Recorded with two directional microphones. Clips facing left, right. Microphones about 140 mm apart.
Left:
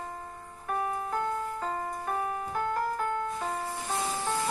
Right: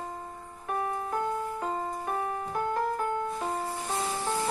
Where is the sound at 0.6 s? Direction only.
10° right (ahead or behind).